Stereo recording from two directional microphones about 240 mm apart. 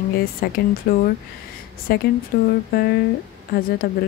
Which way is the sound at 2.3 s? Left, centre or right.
Left.